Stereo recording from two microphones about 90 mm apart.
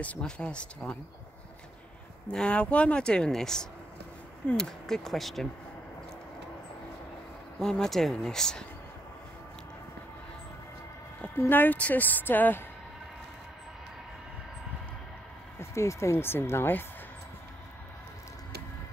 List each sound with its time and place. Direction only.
0.0 s speech: 15° left (ahead or behind)
2.2 s speech: 10° left (ahead or behind)
7.5 s speech: 5° left (ahead or behind)
11.3 s a woman's voice: 20° left (ahead or behind)
15.6 s a woman's voice: 35° left (ahead or behind)